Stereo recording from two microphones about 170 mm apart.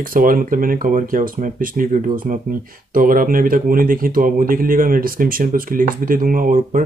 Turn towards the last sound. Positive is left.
turn(degrees=-55)  # may be behind; listen again after turning